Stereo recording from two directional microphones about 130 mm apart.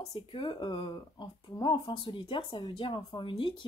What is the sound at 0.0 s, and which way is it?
Speech, 45° left (ahead or behind).